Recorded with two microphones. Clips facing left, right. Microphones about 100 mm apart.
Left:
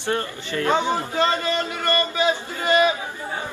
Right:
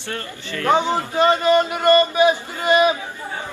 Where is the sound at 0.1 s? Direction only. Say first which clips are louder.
Left 4 dB; 20° left (ahead or behind).